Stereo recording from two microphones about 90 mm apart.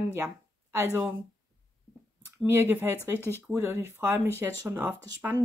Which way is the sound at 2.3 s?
25° right (ahead or behind).